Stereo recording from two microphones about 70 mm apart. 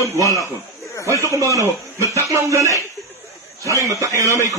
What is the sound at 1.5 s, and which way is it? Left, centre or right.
A man's voice, right.